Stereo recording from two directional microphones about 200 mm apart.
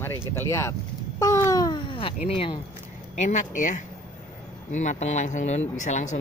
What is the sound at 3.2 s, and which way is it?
Speech, 35° left (ahead or behind).